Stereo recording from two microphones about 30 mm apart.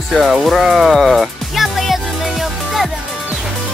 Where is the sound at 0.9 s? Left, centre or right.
Centre.